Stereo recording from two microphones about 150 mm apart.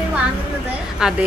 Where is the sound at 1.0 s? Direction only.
5° right (ahead or behind).